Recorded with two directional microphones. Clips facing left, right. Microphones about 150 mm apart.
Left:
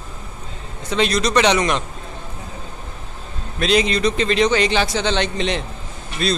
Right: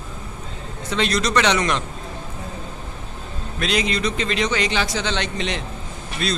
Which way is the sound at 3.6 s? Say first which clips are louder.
Left 5 dB; 30° left (ahead or behind).